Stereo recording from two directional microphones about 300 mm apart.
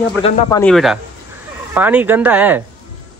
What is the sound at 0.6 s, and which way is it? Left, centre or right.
Speech, centre.